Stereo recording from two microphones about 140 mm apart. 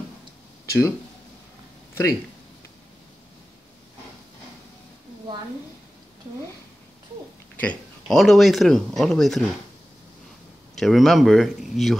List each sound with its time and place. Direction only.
0.7 s speech: 20° left (ahead or behind)
7.6 s speech: 5° left (ahead or behind)
10.8 s speech: centre (ahead or behind)